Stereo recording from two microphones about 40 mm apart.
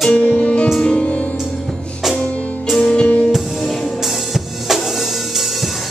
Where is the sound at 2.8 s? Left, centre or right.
Left.